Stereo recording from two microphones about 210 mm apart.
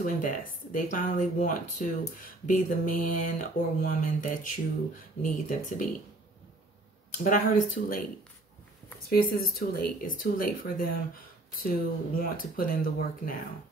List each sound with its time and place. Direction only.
0.0 s speech: 40° left (ahead or behind)
7.2 s speech: 40° left (ahead or behind)
9.1 s speech: 45° left (ahead or behind)